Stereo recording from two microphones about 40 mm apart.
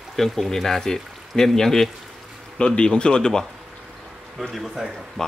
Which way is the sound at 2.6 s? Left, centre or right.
Left.